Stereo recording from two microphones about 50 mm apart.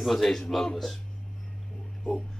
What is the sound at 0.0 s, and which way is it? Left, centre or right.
Speech, centre.